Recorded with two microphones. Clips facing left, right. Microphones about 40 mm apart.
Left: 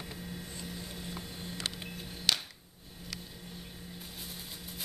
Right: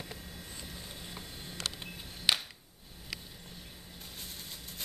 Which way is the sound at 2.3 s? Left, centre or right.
Centre.